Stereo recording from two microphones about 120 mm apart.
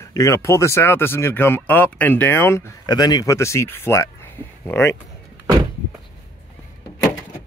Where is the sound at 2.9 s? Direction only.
35° left (ahead or behind).